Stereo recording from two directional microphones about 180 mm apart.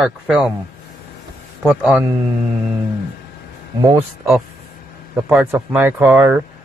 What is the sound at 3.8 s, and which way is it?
Speech, 20° right (ahead or behind).